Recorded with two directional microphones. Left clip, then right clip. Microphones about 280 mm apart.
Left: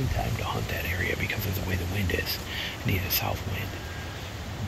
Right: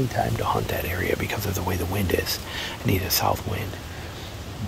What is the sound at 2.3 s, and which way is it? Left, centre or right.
Speech, centre.